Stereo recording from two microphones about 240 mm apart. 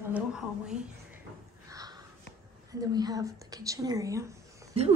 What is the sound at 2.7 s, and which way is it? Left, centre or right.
Speech, centre.